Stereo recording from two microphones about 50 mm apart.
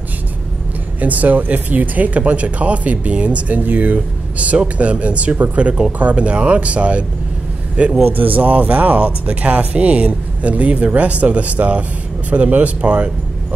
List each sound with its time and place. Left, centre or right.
1.0 s speech: right
8.0 s speech: right